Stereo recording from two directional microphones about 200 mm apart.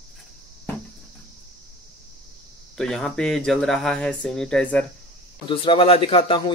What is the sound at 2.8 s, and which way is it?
Speech, 5° left (ahead or behind).